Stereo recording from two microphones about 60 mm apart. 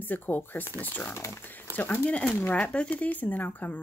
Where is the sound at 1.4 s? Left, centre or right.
Left.